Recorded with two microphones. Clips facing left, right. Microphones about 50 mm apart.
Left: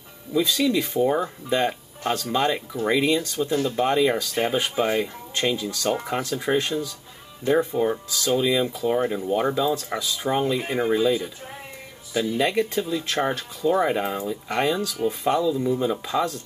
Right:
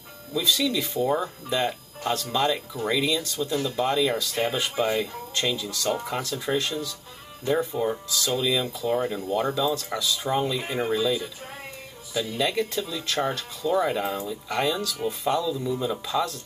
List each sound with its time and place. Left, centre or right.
0.3 s speech: left
8.6 s speech: centre